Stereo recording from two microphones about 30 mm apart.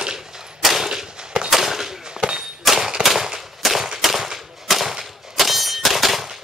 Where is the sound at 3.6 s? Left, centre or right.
Centre.